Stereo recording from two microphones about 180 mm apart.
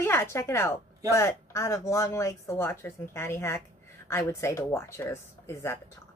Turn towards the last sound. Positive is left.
turn(degrees=15)  # may be behind; listen again after turning